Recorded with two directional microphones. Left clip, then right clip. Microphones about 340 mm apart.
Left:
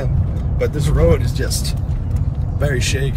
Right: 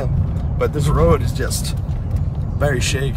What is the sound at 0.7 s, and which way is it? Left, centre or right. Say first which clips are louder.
Speech: right 1 dB; centre.